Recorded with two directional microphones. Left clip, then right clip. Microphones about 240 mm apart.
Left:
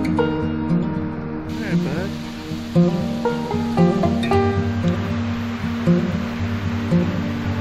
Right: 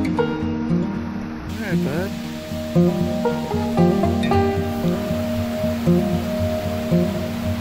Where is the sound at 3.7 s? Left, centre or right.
Centre.